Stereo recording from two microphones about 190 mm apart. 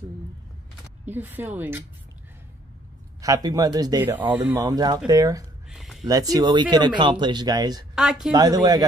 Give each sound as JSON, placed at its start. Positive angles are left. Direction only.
{"t": 1.0, "sound": "speech", "side_deg": -10}
{"t": 3.2, "sound": "speech", "side_deg": -20}
{"t": 4.6, "sound": "speech", "side_deg": -20}
{"t": 5.7, "sound": "a sound", "side_deg": 0}
{"t": 6.0, "sound": "speech", "side_deg": -20}
{"t": 7.9, "sound": "speech", "side_deg": 0}
{"t": 8.3, "sound": "speech", "side_deg": -20}